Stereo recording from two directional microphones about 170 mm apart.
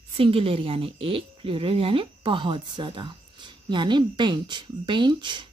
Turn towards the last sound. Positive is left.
turn(degrees=-25)  # may be behind; listen again after turning